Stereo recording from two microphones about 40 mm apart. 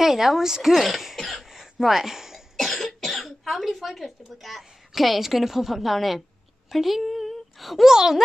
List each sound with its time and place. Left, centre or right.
0.0 s cough: centre
2.5 s speech: centre
6.7 s a sound: centre
7.9 s speech: centre